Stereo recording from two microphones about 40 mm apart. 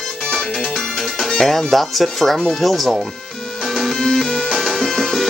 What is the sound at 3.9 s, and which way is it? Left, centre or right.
Music, centre.